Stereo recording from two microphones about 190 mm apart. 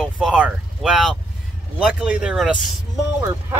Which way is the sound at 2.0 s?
5° right (ahead or behind).